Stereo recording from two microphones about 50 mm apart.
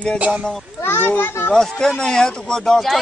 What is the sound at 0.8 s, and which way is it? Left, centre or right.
Speech, left.